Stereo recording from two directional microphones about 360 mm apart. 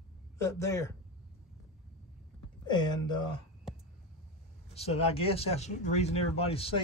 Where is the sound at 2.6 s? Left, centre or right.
Centre.